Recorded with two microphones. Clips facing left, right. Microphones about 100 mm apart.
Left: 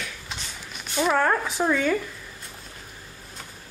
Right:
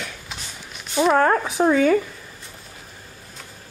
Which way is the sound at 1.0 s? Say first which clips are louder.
Right 5 dB; 20° right (ahead or behind).